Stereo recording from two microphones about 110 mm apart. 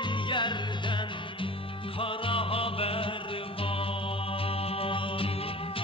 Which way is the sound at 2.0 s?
55° left (ahead or behind).